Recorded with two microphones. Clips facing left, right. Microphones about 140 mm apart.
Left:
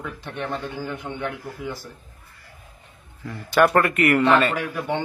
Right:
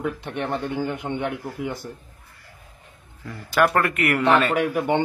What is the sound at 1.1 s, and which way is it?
Speech, 65° right (ahead or behind).